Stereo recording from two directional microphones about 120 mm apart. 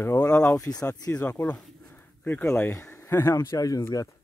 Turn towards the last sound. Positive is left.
turn(degrees=20)  # may be behind; listen again after turning